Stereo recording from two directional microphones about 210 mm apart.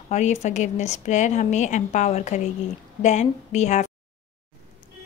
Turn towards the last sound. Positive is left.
turn(degrees=35)  # may be behind; listen again after turning